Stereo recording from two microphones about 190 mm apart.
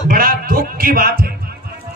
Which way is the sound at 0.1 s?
50° right (ahead or behind).